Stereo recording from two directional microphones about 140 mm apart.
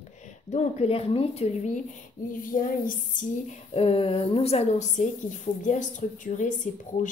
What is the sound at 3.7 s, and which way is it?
A woman's voice, 45° left (ahead or behind).